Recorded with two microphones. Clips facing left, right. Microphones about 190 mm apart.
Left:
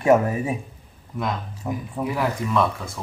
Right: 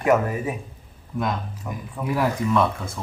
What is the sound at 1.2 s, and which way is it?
Speech, centre (ahead or behind).